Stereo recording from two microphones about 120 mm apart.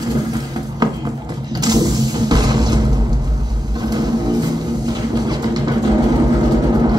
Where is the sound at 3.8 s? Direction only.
35° right (ahead or behind).